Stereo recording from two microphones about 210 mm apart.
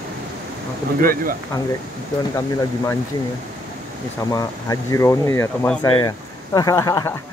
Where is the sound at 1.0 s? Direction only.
40° right (ahead or behind).